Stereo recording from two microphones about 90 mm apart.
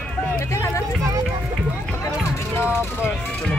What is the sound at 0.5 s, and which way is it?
Vehicle, 30° left (ahead or behind).